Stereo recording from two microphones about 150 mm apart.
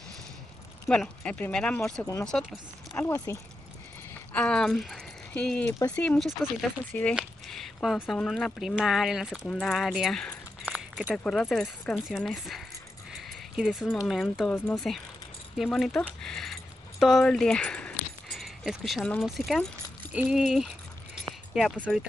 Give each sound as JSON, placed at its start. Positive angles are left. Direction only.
{"t": 0.8, "sound": "speech", "side_deg": 5}
{"t": 2.9, "sound": "speech", "side_deg": 15}
{"t": 7.2, "sound": "speech", "side_deg": 0}
{"t": 10.6, "sound": "keys jangling", "side_deg": -5}
{"t": 11.1, "sound": "speech", "side_deg": 5}
{"t": 13.1, "sound": "a sound", "side_deg": 0}
{"t": 14.0, "sound": "speech", "side_deg": 0}
{"t": 17.0, "sound": "keys jangling", "side_deg": 0}
{"t": 19.2, "sound": "speech", "side_deg": 0}